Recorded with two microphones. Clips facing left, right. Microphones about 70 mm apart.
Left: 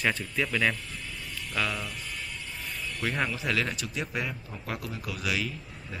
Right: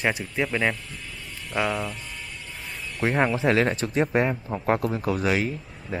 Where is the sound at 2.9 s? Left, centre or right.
Right.